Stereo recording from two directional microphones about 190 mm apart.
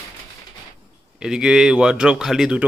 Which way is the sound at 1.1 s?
5° right (ahead or behind).